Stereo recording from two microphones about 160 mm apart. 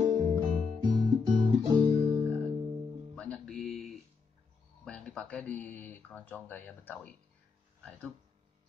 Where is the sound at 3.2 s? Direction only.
5° left (ahead or behind).